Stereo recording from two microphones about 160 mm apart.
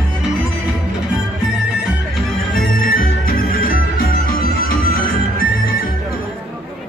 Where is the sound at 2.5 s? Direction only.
65° left (ahead or behind).